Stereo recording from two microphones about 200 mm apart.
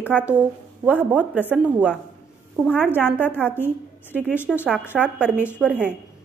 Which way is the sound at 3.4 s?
5° right (ahead or behind).